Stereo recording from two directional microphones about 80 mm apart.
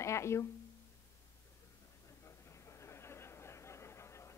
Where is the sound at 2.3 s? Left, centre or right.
Left.